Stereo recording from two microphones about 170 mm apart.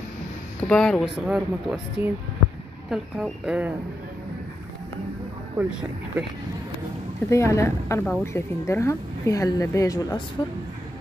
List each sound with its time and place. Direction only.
0.7 s speech: 5° left (ahead or behind)
1.2 s speech: 5° right (ahead or behind)
5.6 s speech: 10° right (ahead or behind)
7.2 s a woman's voice: 15° left (ahead or behind)